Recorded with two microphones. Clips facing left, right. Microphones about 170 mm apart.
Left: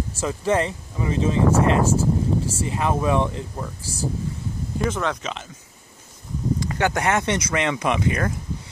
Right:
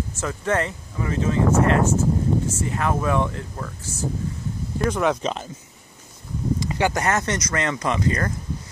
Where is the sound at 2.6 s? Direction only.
25° left (ahead or behind).